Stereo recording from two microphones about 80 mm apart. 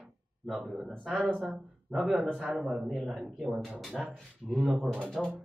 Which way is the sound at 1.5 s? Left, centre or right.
Centre.